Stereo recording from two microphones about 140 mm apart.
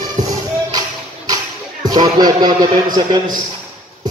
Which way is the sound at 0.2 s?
25° right (ahead or behind).